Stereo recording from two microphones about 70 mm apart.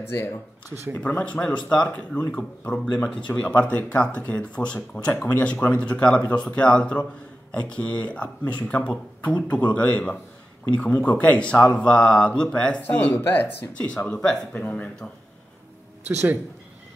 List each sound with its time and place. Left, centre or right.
0.0 s speech: left
0.9 s speech: left
13.8 s speech: centre
16.1 s speech: right